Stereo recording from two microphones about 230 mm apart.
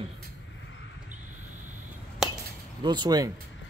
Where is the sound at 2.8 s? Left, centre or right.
Centre.